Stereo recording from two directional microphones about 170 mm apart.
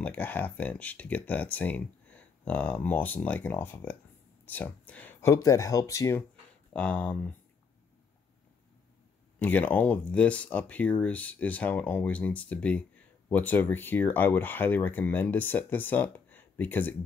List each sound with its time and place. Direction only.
0.0 s speech: 10° left (ahead or behind)
9.4 s speech: 10° left (ahead or behind)